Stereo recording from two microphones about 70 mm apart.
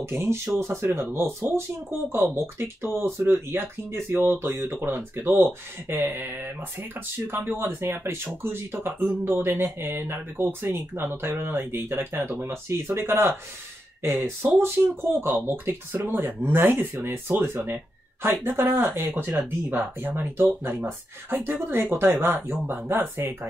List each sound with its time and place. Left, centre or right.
0.0 s speech: right